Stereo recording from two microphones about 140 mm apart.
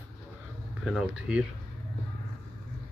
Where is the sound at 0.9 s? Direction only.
5° right (ahead or behind).